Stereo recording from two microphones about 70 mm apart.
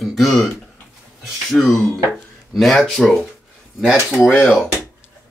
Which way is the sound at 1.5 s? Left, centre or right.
Centre.